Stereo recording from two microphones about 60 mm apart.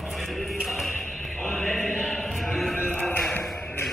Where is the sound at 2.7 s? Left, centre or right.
Left.